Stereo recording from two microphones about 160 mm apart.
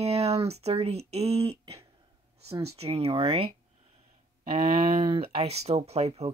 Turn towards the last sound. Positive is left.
turn(degrees=-40)  # may be behind; listen again after turning